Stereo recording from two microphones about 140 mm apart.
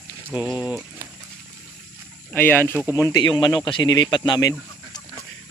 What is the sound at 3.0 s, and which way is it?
Speech, 25° left (ahead or behind).